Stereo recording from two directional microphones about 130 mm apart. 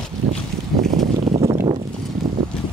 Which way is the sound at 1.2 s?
50° right (ahead or behind).